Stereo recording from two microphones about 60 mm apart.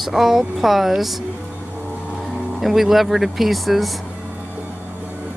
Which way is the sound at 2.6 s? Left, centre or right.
Centre.